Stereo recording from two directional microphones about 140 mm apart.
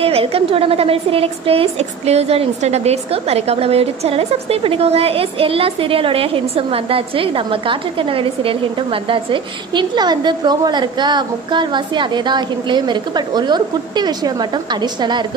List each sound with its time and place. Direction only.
0.0 s a woman's voice: 45° right (ahead or behind)